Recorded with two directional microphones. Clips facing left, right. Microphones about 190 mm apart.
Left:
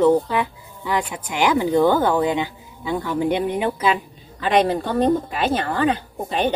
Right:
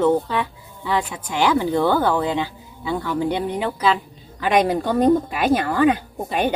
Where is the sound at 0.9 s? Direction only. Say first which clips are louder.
Right 1 dB; 15° left (ahead or behind).